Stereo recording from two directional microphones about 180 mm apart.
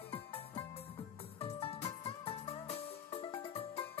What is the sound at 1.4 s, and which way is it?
Music, 35° left (ahead or behind).